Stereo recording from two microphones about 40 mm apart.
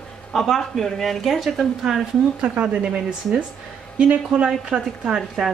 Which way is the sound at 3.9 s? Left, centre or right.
Right.